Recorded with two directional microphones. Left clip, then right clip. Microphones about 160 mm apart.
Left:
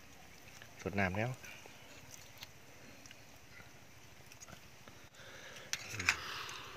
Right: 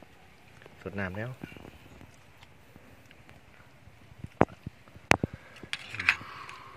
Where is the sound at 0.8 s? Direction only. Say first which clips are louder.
Even; 15° left (ahead or behind).